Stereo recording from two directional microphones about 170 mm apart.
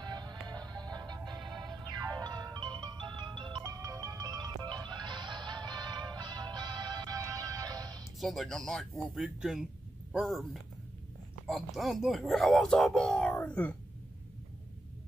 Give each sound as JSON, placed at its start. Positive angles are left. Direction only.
{"t": 0.0, "sound": "music", "side_deg": -25}
{"t": 8.2, "sound": "speech", "side_deg": 0}